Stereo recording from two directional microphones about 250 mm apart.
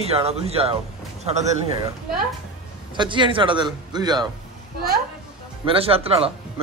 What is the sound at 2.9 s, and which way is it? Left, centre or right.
A man's voice, centre.